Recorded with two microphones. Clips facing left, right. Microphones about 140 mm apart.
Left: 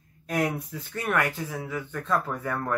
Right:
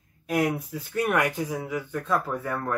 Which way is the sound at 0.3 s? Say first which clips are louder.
Right 2 dB; 5° right (ahead or behind).